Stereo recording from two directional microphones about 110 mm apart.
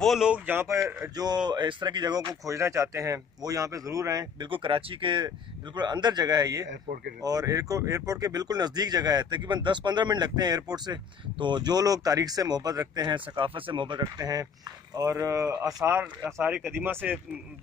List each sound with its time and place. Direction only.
0.0 s a man's voice: centre (ahead or behind)
0.3 s speech: 15° right (ahead or behind)
0.7 s speech: 30° right (ahead or behind)
1.1 s speech: 40° right (ahead or behind)
4.5 s speech: 55° right (ahead or behind)
14.1 s speech: 35° right (ahead or behind); by 17.2 s 15° right (ahead or behind)